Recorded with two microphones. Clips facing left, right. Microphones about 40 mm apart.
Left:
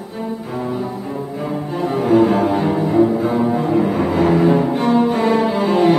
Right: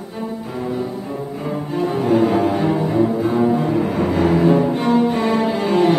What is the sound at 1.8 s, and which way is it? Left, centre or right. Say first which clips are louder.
Cello: left 3 dB; centre.